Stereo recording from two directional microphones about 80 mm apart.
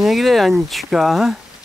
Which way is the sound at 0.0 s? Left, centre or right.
Centre.